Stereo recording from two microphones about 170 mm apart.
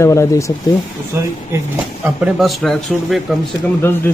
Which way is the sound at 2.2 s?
Centre (ahead or behind).